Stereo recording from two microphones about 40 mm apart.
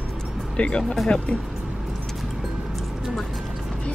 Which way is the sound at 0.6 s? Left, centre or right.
Left.